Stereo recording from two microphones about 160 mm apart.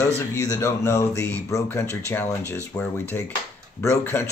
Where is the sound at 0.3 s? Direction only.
20° left (ahead or behind).